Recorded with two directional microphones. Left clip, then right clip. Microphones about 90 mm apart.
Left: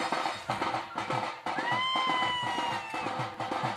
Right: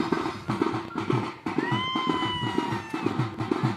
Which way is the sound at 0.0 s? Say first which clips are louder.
Right 2 dB; 15° left (ahead or behind).